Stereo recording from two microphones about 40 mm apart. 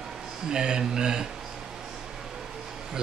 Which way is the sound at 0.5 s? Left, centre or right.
Right.